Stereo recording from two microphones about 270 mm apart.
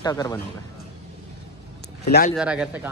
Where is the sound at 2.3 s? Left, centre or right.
Centre.